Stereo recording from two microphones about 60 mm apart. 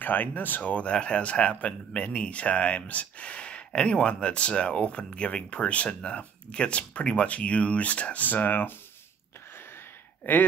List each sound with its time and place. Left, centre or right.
0.0 s speech: left
10.3 s speech: left